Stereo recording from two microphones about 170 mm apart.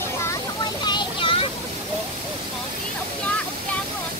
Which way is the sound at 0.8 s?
25° left (ahead or behind).